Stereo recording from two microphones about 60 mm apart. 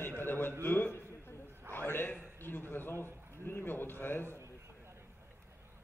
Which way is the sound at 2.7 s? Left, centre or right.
Left.